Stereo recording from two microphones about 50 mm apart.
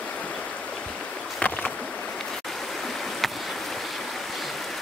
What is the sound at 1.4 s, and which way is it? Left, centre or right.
Boat, left.